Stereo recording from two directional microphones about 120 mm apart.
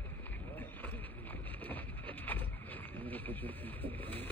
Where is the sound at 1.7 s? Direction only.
15° left (ahead or behind).